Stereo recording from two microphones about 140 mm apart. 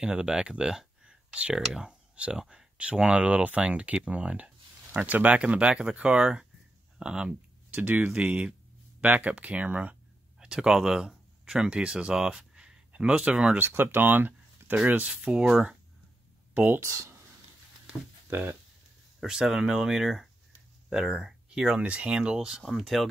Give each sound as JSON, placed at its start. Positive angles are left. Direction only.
{"t": 0.0, "sound": "speech", "side_deg": -5}
{"t": 17.8, "sound": "a sound", "side_deg": -15}
{"t": 19.1, "sound": "speech", "side_deg": -5}